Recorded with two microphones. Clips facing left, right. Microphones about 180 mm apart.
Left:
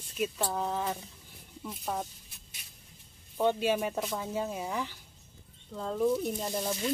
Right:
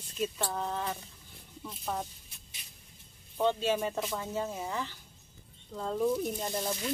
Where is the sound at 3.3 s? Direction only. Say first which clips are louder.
Left 1 dB; 10° left (ahead or behind).